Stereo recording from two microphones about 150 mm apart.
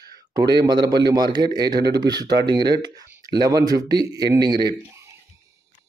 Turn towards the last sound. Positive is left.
turn(degrees=-25)  # may be behind; listen again after turning